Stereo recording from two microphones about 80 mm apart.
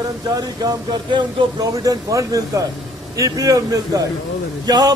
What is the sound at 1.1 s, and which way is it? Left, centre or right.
Speech, right.